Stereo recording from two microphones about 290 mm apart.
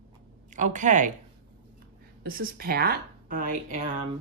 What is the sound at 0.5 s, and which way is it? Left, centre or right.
Speech, right.